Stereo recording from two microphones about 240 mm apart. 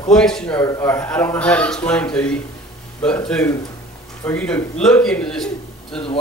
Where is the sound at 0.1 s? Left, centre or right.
Centre.